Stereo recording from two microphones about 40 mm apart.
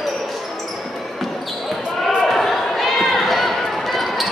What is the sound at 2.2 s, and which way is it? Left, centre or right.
Run, centre.